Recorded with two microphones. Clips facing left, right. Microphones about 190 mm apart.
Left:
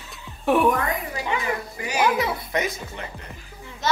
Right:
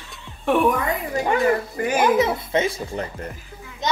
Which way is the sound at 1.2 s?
50° right (ahead or behind).